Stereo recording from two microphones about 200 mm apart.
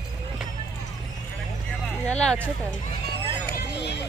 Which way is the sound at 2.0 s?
5° left (ahead or behind).